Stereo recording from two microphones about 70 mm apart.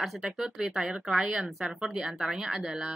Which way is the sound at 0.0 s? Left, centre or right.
Centre.